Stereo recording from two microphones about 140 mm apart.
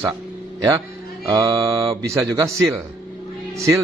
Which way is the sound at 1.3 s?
25° right (ahead or behind).